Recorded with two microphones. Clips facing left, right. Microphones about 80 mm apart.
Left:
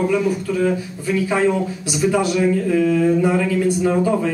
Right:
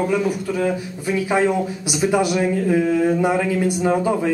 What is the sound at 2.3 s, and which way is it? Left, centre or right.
Speech, right.